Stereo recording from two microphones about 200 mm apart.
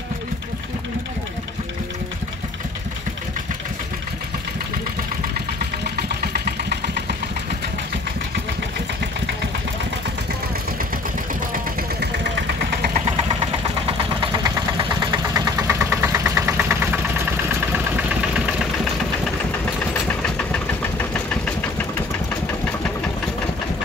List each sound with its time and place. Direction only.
5.9 s vehicle: 50° right (ahead or behind)
11.5 s vehicle: 55° right (ahead or behind)
14.3 s engine: 20° right (ahead or behind)
19.9 s engine: 10° left (ahead or behind)